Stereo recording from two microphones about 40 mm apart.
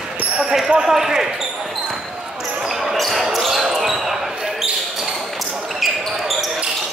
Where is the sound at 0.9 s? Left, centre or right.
Centre.